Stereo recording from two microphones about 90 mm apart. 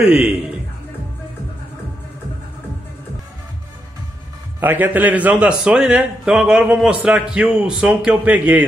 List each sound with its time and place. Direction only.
0.0 s speech: 10° right (ahead or behind)
4.6 s a man's voice: 20° right (ahead or behind)